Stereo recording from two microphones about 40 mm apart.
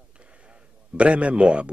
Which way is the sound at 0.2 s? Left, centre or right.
Right.